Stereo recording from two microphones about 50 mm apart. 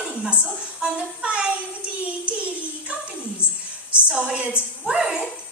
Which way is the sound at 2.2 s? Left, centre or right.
Right.